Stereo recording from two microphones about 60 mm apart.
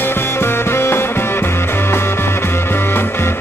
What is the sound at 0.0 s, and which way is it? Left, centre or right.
Music, left.